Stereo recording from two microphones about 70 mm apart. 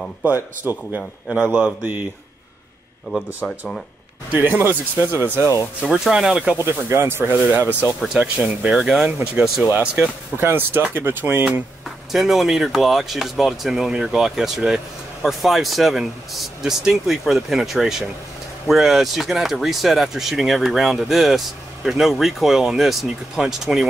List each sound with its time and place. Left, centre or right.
0.2 s speech: right
3.4 s speech: centre
4.3 s speech: right
5.4 s speech: left
5.8 s speech: centre
6.6 s speech: right
8.4 s speech: centre
10.3 s speech: right
12.1 s speech: centre